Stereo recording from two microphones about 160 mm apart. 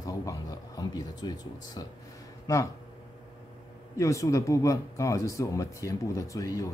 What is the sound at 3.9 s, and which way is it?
Speech, 20° left (ahead or behind).